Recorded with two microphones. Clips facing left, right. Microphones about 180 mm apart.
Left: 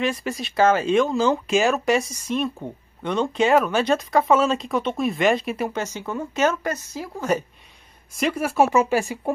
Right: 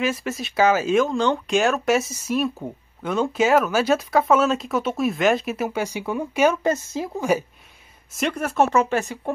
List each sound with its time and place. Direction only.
0.0 s speech: centre (ahead or behind)
6.6 s speech: 25° right (ahead or behind)
7.2 s speech: 10° right (ahead or behind)
8.2 s speech: 5° left (ahead or behind)